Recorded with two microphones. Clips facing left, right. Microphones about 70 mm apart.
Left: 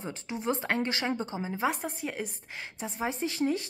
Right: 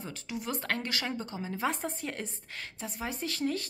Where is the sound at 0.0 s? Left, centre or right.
Left; by 2.2 s centre.